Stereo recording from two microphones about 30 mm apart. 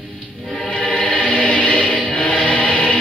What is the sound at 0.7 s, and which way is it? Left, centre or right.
Chant, left.